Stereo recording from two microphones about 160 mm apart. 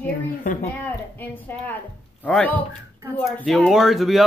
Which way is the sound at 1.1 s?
10° left (ahead or behind).